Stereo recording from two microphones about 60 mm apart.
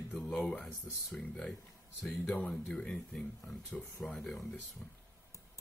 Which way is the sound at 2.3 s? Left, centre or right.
Left.